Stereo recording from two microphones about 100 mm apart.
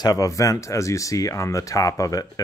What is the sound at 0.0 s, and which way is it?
Speech, 35° left (ahead or behind).